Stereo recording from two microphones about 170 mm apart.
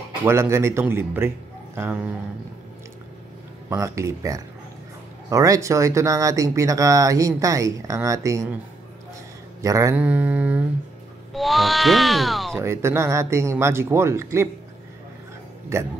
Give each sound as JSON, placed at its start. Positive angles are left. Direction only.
{"t": 0.2, "sound": "speech", "side_deg": -15}
{"t": 3.7, "sound": "speech", "side_deg": -20}
{"t": 9.6, "sound": "speech", "side_deg": -20}
{"t": 9.9, "sound": "speech", "side_deg": -10}
{"t": 12.5, "sound": "speech", "side_deg": -15}
{"t": 15.7, "sound": "speech", "side_deg": -15}